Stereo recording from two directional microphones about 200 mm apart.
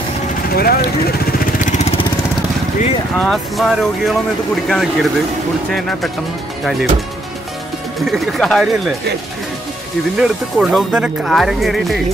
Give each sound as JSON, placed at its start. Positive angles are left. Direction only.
{"t": 0.6, "sound": "vehicle", "side_deg": 50}
{"t": 3.3, "sound": "speech", "side_deg": 0}
{"t": 8.3, "sound": "speech", "side_deg": 0}
{"t": 10.1, "sound": "speech", "side_deg": -5}